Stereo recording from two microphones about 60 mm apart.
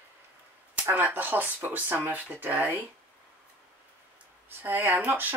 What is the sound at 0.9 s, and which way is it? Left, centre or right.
Speech, right.